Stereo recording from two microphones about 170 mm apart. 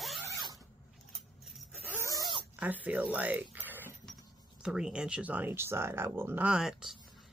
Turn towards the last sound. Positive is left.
turn(degrees=0)  # may be behind; listen again after turning